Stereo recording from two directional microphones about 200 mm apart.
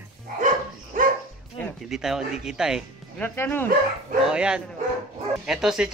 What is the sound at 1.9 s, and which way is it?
Speech, 5° right (ahead or behind).